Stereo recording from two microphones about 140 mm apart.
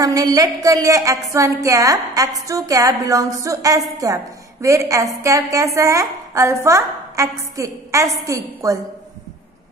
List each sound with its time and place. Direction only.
0.0 s a woman's voice: 25° right (ahead or behind)